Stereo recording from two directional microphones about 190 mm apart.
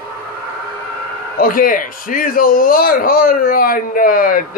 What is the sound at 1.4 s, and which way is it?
A man's voice, 45° left (ahead or behind).